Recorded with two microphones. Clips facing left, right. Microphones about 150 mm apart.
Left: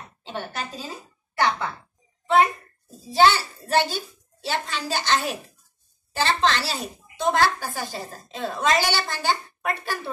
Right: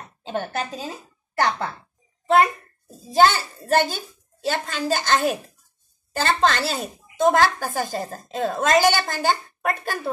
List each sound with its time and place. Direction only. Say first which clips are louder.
0.3 s a woman's voice: right 5 dB; 55° right (ahead or behind)
1.4 s a woman's voice: right 1 dB; 45° right (ahead or behind)
3.1 s a woman's voice: right 1 dB; 45° right (ahead or behind)